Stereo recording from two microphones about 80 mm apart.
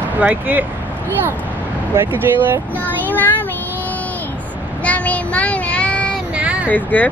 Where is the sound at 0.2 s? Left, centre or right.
Right.